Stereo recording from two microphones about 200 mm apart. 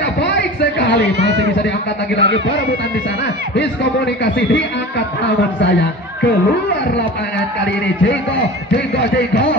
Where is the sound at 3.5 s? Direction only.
60° left (ahead or behind).